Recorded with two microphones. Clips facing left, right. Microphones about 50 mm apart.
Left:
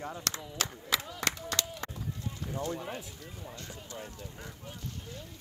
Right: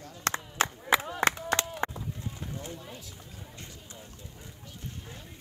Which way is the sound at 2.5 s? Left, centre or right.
Left.